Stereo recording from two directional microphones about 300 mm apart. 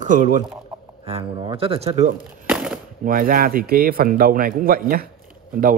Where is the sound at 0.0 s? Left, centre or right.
Right.